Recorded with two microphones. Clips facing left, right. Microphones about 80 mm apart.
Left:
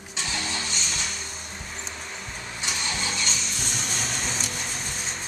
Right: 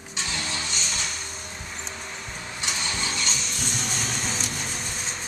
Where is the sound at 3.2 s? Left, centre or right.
Centre.